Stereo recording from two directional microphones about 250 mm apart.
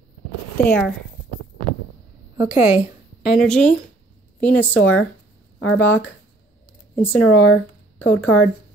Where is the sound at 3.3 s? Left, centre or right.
Centre.